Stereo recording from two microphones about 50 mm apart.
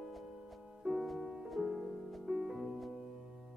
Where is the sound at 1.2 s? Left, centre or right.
Centre.